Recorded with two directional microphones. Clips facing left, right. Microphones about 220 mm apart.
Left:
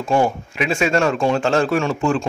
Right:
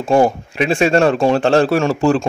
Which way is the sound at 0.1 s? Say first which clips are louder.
Right 5 dB; 35° right (ahead or behind).